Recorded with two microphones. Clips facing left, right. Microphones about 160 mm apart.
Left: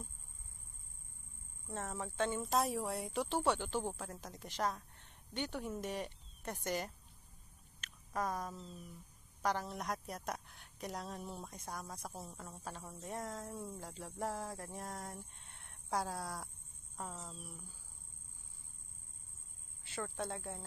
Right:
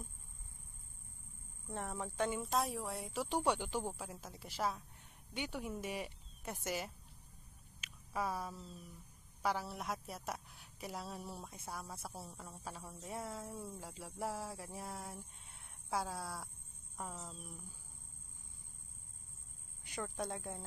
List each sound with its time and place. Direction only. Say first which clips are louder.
1.7 s speech: even; 15° right (ahead or behind)
2.5 s a woman's voice: left 2 dB; centre (ahead or behind)
3.3 s speech: right 1 dB; 10° right (ahead or behind)
7.8 s a sound: left 1 dB; 5° right (ahead or behind)
9.4 s a woman's voice: left 1 dB; 5° right (ahead or behind)
15.4 s a sound: even; centre (ahead or behind)
16.9 s speech: even; 10° right (ahead or behind)
19.8 s speech: even; 15° right (ahead or behind)